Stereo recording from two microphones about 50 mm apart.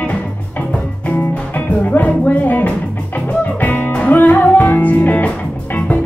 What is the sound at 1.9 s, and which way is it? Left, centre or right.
Music, left.